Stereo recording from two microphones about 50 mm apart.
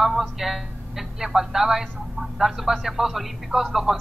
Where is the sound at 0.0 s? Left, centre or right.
Centre.